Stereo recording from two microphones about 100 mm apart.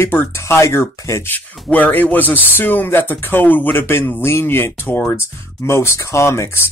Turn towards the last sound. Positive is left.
turn(degrees=25)  # may be behind; listen again after turning